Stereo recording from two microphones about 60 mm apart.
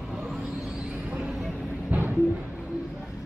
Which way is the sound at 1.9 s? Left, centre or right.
Right.